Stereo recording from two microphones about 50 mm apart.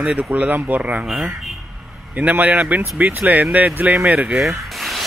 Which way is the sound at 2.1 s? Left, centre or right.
Right.